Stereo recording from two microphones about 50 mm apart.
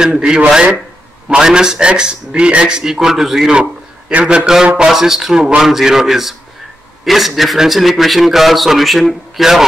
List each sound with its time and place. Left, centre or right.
0.0 s a man's voice: centre
4.1 s a man's voice: right
4.8 s a man's voice: centre